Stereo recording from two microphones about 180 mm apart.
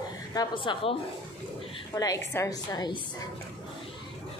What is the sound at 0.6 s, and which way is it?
Speech, 30° left (ahead or behind).